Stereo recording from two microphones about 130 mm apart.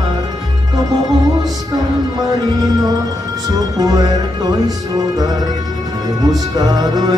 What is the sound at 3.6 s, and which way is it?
Music, 30° right (ahead or behind).